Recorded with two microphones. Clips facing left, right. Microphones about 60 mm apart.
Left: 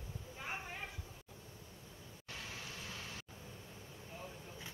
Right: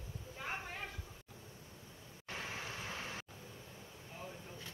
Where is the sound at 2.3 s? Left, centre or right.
Right.